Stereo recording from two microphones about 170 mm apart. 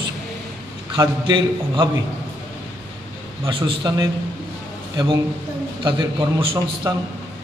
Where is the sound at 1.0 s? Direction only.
25° right (ahead or behind).